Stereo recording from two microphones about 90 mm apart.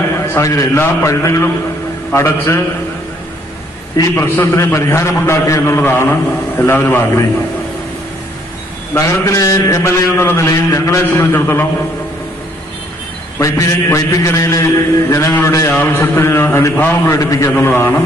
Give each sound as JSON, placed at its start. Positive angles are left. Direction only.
{"t": 0.4, "sound": "a man's voice", "side_deg": 35}
{"t": 4.1, "sound": "a man's voice", "side_deg": 25}
{"t": 8.9, "sound": "a man's voice", "side_deg": 35}
{"t": 13.4, "sound": "a man's voice", "side_deg": 35}
{"t": 15.7, "sound": "a man's voice", "side_deg": 25}
{"t": 17.6, "sound": "a man's voice", "side_deg": 25}